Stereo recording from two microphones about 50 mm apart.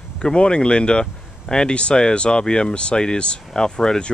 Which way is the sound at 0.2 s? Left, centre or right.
Centre.